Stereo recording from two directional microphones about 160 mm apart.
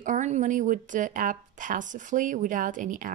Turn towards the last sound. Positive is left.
turn(degrees=-55)  # may be behind; listen again after turning